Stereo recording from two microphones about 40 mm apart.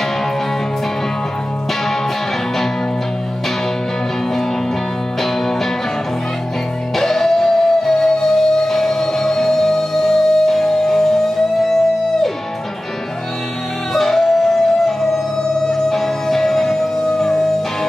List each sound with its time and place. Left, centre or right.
7.0 s music: centre
13.9 s music: centre